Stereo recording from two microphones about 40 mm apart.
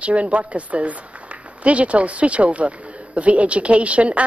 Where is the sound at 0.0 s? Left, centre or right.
Right.